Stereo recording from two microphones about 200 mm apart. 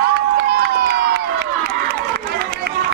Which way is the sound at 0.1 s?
55° right (ahead or behind).